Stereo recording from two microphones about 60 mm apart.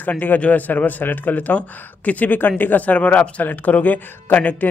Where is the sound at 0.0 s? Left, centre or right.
Left.